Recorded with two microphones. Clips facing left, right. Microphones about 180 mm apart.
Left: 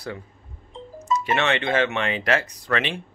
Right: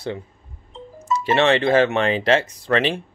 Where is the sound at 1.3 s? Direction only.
30° right (ahead or behind).